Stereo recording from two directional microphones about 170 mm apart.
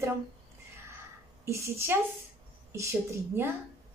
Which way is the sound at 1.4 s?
15° right (ahead or behind).